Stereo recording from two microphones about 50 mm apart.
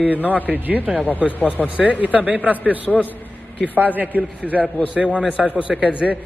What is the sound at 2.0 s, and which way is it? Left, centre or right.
Speech, right.